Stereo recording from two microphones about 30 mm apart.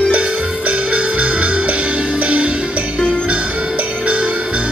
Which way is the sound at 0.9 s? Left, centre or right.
Right.